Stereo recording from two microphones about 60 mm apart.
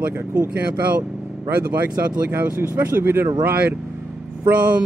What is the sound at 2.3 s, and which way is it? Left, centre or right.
Speech, right.